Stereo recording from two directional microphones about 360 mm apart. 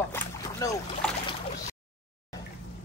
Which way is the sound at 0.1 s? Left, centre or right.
Centre.